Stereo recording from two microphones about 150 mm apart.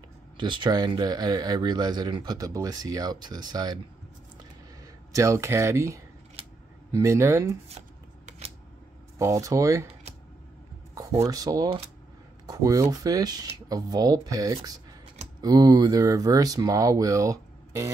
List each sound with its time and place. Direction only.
0.4 s speech: 30° right (ahead or behind)
5.1 s speech: 20° right (ahead or behind)
6.4 s camera: 40° right (ahead or behind)
6.9 s speech: 20° right (ahead or behind)
9.2 s speech: 20° right (ahead or behind)
11.0 s speech: 20° right (ahead or behind)